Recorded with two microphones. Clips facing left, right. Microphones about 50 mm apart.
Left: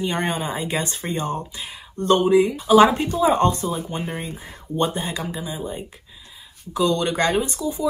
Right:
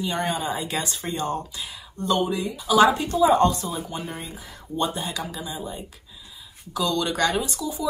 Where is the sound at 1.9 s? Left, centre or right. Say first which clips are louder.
Left 8 dB; left.